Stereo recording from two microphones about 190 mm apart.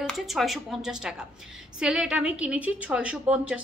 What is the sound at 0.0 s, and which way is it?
A woman's voice, centre (ahead or behind).